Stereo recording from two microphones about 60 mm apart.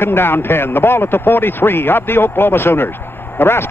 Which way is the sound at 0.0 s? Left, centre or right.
Left.